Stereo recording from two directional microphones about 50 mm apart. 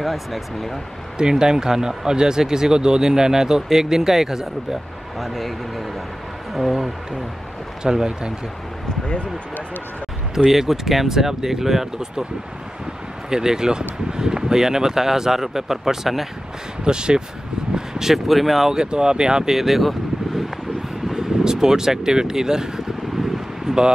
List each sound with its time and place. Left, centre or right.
0.0 s speech: centre
1.1 s speech: centre
7.8 s speech: centre
9.0 s speech: left
10.3 s speech: centre
13.3 s speech: centre
16.8 s speech: centre
18.7 s speech: centre
21.1 s vehicle: centre